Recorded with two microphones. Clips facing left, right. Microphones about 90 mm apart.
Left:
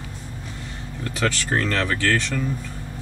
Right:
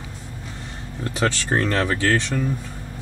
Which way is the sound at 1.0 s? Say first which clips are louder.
Right 2 dB; 25° right (ahead or behind).